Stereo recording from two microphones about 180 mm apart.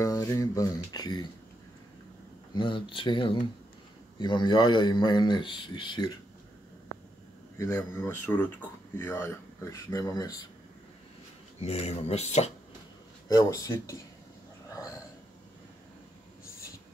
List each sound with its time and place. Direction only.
0.0 s speech: 20° left (ahead or behind)
2.5 s speech: 25° left (ahead or behind)
7.5 s speech: 15° left (ahead or behind)
11.6 s speech: 35° left (ahead or behind)
13.3 s speech: 20° left (ahead or behind)
14.7 s a sound: 20° left (ahead or behind)